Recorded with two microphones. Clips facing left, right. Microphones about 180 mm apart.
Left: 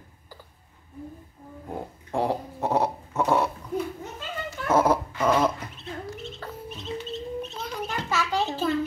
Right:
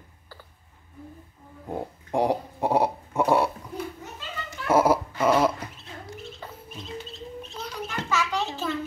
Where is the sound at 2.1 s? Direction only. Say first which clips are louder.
Right 2 dB; 15° right (ahead or behind).